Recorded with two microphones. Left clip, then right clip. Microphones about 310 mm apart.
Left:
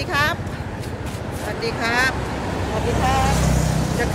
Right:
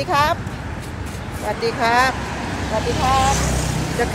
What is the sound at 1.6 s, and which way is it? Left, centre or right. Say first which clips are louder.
Speech: right 4 dB; centre.